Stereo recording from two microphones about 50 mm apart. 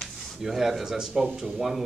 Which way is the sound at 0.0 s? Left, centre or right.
Centre.